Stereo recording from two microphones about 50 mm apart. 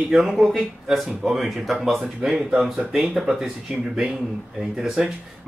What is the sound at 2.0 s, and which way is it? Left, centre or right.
Speech, centre.